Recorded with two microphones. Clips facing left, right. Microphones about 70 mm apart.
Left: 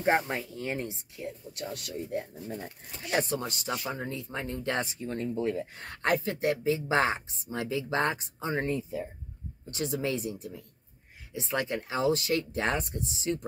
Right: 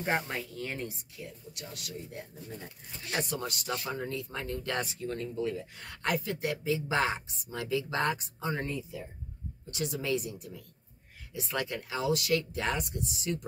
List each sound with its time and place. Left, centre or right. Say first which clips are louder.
0.0 s speech: left 5 dB; left
1.5 s speech: left 6 dB; left